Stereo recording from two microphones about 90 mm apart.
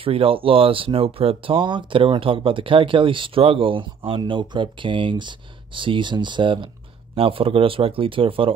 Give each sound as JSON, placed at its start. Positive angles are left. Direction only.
{"t": 0.0, "sound": "speech", "side_deg": -90}
{"t": 7.2, "sound": "speech", "side_deg": -90}